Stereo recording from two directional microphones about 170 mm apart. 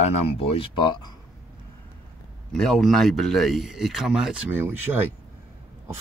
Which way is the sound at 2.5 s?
5° left (ahead or behind).